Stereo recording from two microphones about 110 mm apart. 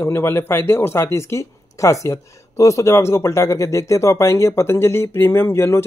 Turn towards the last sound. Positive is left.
turn(degrees=25)  # may be behind; listen again after turning